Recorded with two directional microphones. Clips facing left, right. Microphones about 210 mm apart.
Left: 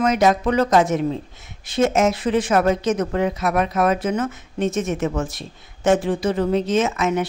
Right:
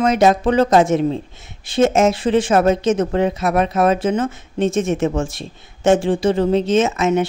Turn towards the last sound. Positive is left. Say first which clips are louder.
# right 4 dB
turn(degrees=-25)  # may be behind; listen again after turning